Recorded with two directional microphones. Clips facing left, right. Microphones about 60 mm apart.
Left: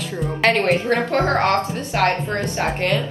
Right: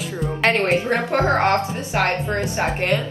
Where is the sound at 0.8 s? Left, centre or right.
Centre.